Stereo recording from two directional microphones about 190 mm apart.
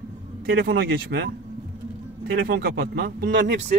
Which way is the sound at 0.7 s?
55° right (ahead or behind).